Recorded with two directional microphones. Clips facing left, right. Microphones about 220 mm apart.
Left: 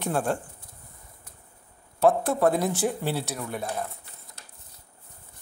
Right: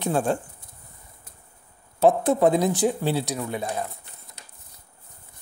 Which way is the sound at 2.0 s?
20° right (ahead or behind).